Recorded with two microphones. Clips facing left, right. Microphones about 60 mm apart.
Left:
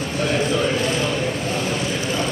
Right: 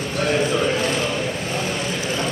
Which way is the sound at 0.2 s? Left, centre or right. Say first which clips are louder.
Right 1 dB; centre.